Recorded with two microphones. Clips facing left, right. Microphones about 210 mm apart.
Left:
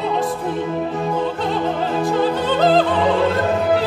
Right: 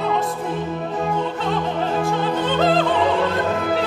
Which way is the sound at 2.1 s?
35° left (ahead or behind).